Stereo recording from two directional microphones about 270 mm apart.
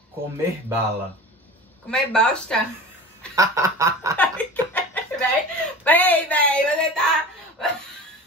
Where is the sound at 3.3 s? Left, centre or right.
Centre.